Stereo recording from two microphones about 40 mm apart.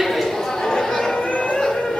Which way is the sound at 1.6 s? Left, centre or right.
Centre.